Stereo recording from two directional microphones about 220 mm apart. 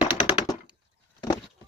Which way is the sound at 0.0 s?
5° right (ahead or behind).